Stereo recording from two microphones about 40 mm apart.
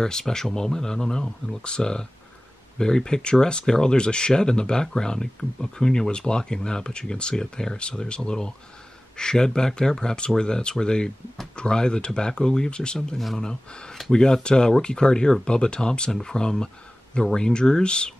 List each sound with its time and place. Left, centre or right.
0.0 s speech: centre